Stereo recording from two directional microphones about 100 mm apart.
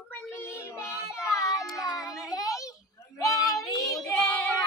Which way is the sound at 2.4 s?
35° left (ahead or behind).